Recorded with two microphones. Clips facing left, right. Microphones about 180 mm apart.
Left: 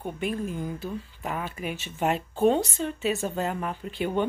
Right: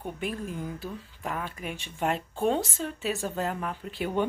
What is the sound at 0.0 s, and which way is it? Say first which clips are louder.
Speech: left 3 dB; centre (ahead or behind).